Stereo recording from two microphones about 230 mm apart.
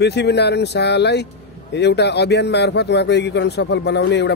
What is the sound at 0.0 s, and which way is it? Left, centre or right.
Speech, left.